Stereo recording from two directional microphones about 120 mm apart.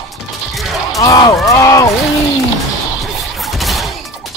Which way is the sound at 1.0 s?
30° left (ahead or behind).